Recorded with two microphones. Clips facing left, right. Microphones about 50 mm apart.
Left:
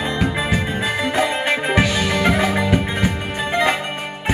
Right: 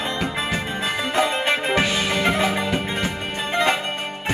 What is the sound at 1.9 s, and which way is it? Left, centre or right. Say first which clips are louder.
Music: left 3 dB; left.